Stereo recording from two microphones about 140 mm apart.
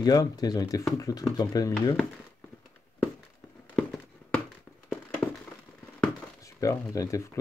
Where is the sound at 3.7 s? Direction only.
5° left (ahead or behind).